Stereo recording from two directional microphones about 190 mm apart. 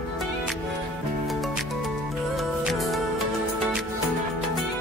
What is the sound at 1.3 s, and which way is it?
Music, centre (ahead or behind).